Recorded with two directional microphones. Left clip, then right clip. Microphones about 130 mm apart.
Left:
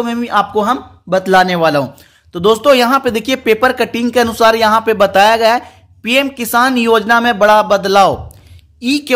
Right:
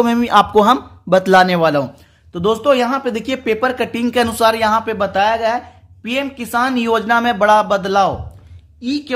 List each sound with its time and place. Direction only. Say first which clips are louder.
0.0 s speech: right 2 dB; 25° right (ahead or behind)
1.3 s a man's voice: left 3 dB; 5° right (ahead or behind)
2.3 s speech: left 5 dB; 15° left (ahead or behind)
8.7 s a woman's voice: left 6 dB; 35° left (ahead or behind)